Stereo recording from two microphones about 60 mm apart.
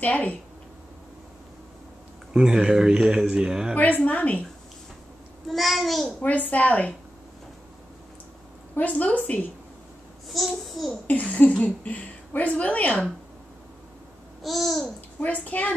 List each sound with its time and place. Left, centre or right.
0.0 s a woman's voice: left
2.3 s a man's voice: centre
3.7 s a woman's voice: left
5.5 s a child's voice: centre
6.5 s a woman's voice: left
8.7 s a woman's voice: left
10.2 s a child's voice: centre
11.1 s a woman's voice: left
14.4 s a child's voice: centre
15.1 s a woman's voice: left